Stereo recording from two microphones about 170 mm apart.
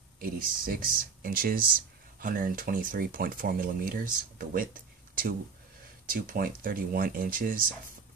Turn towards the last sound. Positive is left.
turn(degrees=-55)  # may be behind; listen again after turning